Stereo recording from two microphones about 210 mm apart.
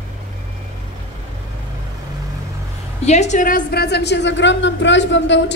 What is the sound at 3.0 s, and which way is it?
A woman's voice, 35° left (ahead or behind).